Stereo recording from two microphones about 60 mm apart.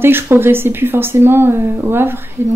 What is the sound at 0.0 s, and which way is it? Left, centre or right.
A woman's voice, right.